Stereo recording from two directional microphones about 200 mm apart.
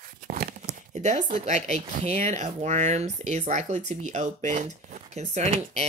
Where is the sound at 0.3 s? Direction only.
40° right (ahead or behind).